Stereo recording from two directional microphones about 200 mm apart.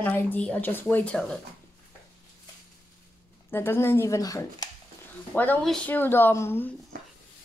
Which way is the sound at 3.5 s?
10° left (ahead or behind).